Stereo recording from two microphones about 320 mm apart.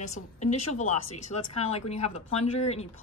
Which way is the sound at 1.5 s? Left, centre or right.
Left.